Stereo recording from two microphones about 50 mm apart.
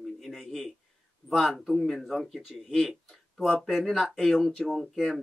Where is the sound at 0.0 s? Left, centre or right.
Centre.